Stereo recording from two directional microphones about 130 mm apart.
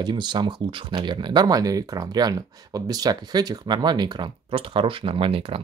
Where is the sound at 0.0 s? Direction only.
35° right (ahead or behind).